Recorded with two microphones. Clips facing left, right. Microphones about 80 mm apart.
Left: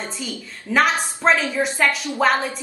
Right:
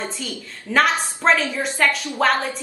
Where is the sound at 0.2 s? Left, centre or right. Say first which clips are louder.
Left 1 dB; centre.